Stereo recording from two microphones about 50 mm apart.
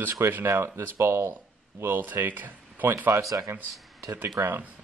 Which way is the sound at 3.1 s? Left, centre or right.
Right.